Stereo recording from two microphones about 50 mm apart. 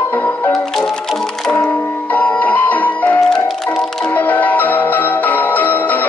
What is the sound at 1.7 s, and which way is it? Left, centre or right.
Music, left.